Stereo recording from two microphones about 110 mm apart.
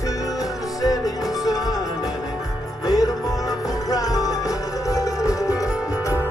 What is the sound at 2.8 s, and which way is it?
Music, 35° left (ahead or behind).